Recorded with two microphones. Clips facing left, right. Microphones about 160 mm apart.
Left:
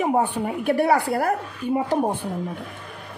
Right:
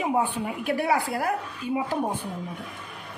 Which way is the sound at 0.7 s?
60° left (ahead or behind).